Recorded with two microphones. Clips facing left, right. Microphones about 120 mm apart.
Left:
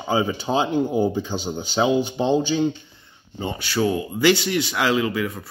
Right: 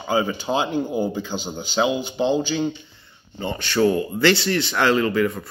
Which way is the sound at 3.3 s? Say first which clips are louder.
Right 2 dB; 10° left (ahead or behind).